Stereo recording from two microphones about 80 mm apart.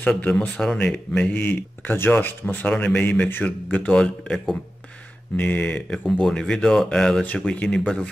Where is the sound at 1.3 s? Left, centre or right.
Left.